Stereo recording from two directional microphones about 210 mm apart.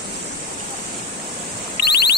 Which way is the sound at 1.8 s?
50° left (ahead or behind).